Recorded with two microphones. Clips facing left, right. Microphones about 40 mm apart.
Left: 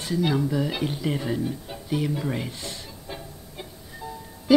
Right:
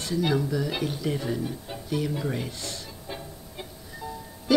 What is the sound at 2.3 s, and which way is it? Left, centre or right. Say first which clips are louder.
Speech: left 1 dB; centre.